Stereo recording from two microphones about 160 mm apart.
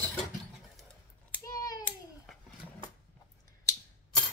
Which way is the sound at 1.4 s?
20° left (ahead or behind).